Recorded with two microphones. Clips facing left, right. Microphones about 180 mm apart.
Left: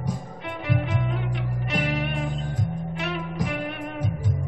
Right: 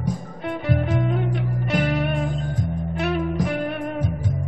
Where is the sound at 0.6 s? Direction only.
40° right (ahead or behind).